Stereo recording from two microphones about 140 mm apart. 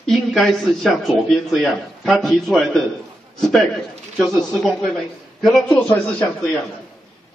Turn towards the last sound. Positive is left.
turn(degrees=10)  # may be behind; listen again after turning